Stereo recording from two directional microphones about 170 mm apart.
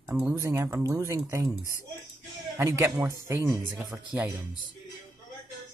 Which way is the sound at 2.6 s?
20° right (ahead or behind).